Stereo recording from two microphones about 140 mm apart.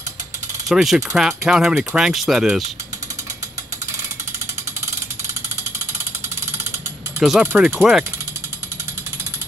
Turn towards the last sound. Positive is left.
turn(degrees=-5)  # may be behind; listen again after turning